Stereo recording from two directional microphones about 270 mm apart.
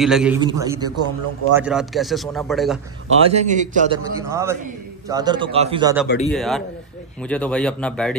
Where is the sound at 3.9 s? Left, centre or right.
Centre.